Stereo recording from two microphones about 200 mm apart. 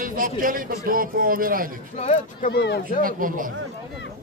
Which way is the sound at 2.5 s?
60° left (ahead or behind).